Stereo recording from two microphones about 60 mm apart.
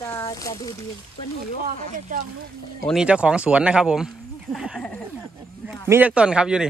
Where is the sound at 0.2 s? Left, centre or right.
Left.